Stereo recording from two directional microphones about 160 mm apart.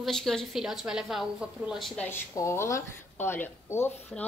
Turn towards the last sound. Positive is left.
turn(degrees=15)  # may be behind; listen again after turning